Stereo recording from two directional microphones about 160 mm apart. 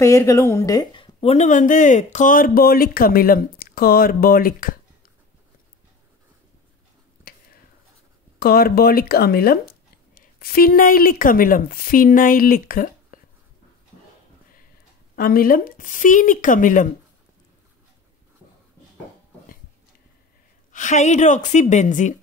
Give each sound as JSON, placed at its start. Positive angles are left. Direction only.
{"t": 0.0, "sound": "a woman's voice", "side_deg": 20}
{"t": 1.3, "sound": "speech", "side_deg": 50}
{"t": 8.4, "sound": "speech", "side_deg": 70}
{"t": 15.1, "sound": "speech", "side_deg": 65}
{"t": 20.7, "sound": "a woman's voice", "side_deg": 50}